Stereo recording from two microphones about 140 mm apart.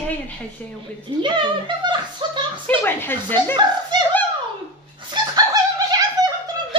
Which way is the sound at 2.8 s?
15° left (ahead or behind).